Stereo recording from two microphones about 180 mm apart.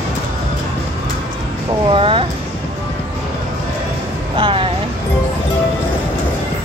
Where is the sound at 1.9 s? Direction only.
30° right (ahead or behind).